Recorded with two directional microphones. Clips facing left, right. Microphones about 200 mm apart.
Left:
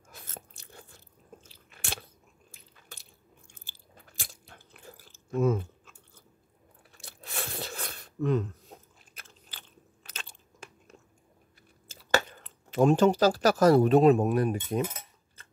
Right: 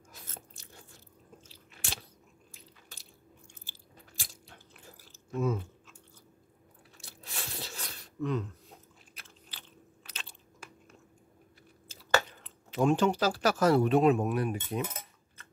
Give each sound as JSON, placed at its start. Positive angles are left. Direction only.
{"t": 0.1, "sound": "biting", "side_deg": 55}
{"t": 7.0, "sound": "a sound", "side_deg": 55}
{"t": 8.7, "sound": "biting", "side_deg": 40}
{"t": 11.9, "sound": "speech", "side_deg": 50}